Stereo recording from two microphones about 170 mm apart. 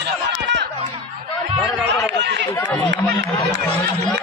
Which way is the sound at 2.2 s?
90° right.